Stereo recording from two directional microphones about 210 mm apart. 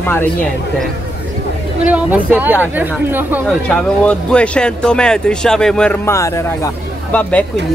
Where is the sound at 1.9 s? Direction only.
5° right (ahead or behind).